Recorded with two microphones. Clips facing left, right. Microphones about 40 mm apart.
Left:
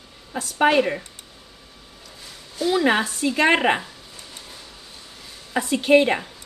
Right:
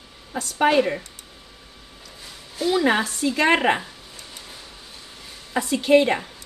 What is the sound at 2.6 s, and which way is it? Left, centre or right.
Speech, centre.